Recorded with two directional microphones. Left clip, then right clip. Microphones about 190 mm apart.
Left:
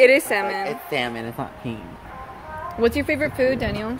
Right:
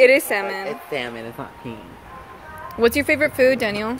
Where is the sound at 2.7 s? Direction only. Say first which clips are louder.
Right 3 dB; 25° right (ahead or behind).